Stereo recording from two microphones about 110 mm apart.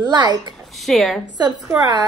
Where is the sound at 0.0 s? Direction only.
40° right (ahead or behind).